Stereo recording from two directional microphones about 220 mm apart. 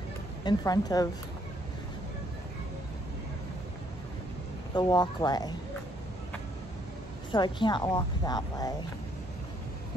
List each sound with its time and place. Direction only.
0.4 s speech: 20° left (ahead or behind)
4.7 s a woman's voice: 20° left (ahead or behind)
7.2 s a woman's voice: 20° left (ahead or behind)